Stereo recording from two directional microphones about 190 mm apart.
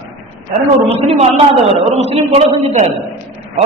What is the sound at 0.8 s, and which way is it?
A man's voice, 30° right (ahead or behind).